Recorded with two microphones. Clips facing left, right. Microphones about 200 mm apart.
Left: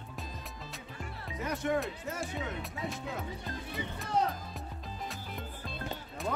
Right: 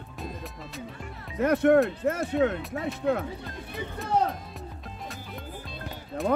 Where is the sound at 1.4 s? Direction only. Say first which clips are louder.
Right 12 dB; 60° right (ahead or behind).